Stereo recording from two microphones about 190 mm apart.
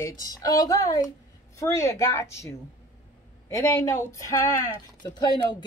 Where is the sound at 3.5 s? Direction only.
15° left (ahead or behind).